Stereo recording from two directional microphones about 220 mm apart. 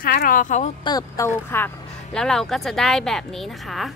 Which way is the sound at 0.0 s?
40° left (ahead or behind).